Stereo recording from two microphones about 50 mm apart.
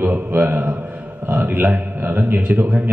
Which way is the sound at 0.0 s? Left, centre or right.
Right.